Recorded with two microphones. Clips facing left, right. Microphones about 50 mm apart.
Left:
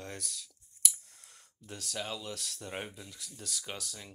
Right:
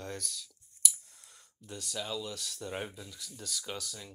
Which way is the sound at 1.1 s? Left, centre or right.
Left.